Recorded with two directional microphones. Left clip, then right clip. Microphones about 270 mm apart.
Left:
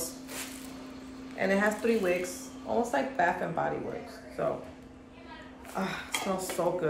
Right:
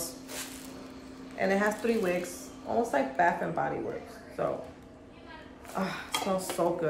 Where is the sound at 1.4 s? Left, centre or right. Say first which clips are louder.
Even; centre.